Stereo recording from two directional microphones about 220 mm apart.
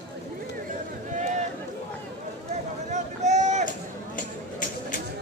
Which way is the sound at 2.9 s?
35° right (ahead or behind).